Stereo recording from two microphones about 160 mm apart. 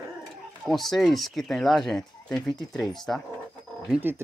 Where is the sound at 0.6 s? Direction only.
Centre (ahead or behind).